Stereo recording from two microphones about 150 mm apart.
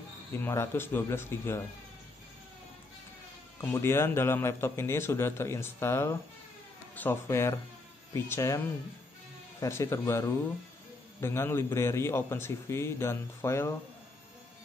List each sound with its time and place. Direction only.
0.3 s a man's voice: 15° left (ahead or behind)
3.6 s a man's voice: 15° left (ahead or behind)